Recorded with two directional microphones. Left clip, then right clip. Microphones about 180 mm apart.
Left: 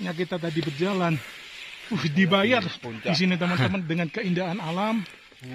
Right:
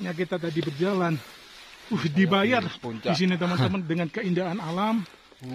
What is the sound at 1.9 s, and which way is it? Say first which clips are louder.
Speech: left 1 dB; 35° left (ahead or behind).